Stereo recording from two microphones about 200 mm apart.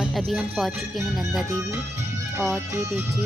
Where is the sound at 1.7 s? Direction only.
15° right (ahead or behind).